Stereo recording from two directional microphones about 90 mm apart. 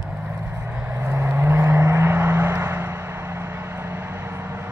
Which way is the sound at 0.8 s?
25° right (ahead or behind).